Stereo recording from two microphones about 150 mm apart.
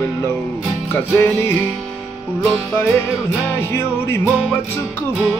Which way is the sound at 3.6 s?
15° left (ahead or behind).